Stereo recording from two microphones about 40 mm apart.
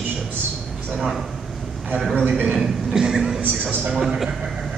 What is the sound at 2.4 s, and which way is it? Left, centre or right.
Speech, centre.